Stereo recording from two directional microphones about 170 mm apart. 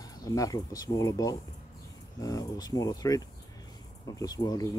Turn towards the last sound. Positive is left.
turn(degrees=20)  # may be behind; listen again after turning